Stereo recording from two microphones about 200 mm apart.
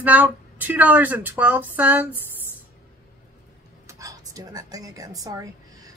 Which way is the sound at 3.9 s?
15° right (ahead or behind).